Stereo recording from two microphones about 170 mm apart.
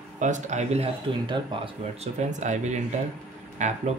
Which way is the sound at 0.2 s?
45° right (ahead or behind).